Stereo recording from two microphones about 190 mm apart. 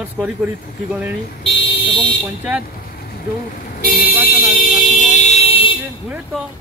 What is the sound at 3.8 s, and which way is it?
Speech, 50° left (ahead or behind).